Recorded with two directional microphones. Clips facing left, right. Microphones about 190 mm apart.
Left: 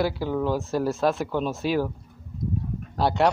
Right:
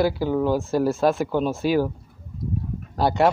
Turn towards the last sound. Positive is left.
turn(degrees=0)  # may be behind; listen again after turning